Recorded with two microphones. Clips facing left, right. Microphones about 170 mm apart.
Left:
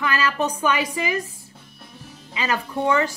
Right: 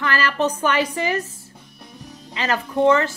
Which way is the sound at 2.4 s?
15° left (ahead or behind).